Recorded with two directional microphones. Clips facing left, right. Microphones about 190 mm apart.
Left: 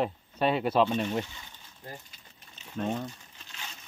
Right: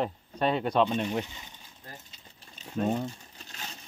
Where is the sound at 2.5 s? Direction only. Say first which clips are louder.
Right 3 dB; 10° right (ahead or behind).